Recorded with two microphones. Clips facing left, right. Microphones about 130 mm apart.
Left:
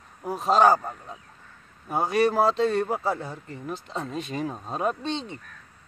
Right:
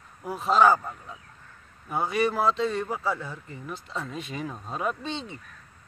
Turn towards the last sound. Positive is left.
turn(degrees=-5)  # may be behind; listen again after turning